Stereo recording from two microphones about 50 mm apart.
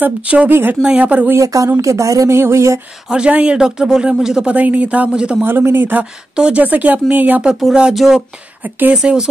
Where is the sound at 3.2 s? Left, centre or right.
Right.